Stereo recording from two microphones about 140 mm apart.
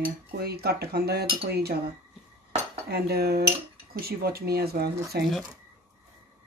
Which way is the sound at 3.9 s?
90° right.